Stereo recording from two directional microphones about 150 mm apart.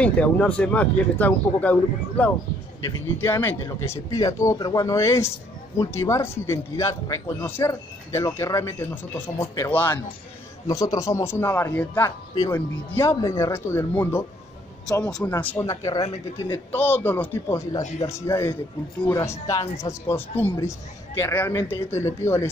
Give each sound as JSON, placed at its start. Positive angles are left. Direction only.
{"t": 0.0, "sound": "speech", "side_deg": 10}
{"t": 10.7, "sound": "speech", "side_deg": 25}
{"t": 15.4, "sound": "speech", "side_deg": 20}
{"t": 16.7, "sound": "speech", "side_deg": 15}
{"t": 19.8, "sound": "speech", "side_deg": 20}